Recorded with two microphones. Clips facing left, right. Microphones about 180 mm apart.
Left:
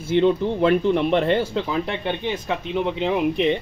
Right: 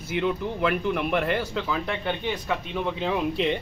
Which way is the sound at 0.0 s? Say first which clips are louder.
Left 8 dB; 30° left (ahead or behind).